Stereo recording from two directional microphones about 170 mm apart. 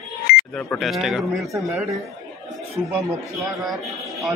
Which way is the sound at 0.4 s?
5° left (ahead or behind).